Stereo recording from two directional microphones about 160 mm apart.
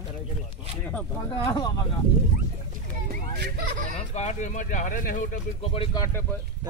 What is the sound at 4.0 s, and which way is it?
Speech, 45° left (ahead or behind).